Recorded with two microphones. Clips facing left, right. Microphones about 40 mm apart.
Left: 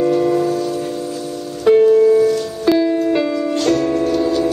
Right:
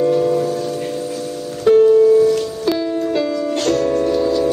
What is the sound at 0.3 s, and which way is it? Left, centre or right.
Music, left.